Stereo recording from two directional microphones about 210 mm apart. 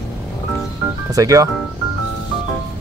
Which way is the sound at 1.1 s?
15° right (ahead or behind).